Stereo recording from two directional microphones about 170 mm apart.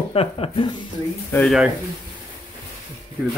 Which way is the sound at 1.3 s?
Centre (ahead or behind).